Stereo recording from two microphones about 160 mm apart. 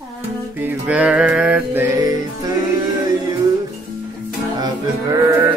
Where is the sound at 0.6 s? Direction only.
10° right (ahead or behind).